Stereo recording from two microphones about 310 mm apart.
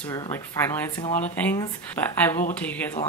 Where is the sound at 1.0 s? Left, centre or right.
Left.